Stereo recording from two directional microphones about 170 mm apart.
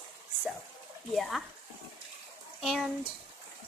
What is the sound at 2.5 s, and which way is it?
Speech, centre (ahead or behind).